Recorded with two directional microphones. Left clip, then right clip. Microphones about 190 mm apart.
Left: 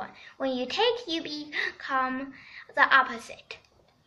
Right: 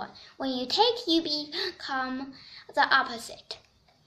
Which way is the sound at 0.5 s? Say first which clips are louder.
Right 2 dB; 65° right (ahead or behind).